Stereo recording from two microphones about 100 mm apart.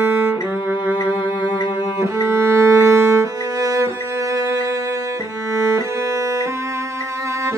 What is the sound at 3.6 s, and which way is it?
Music, 35° right (ahead or behind).